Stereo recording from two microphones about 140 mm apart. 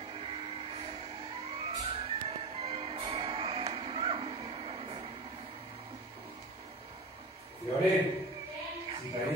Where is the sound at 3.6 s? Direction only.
40° right (ahead or behind).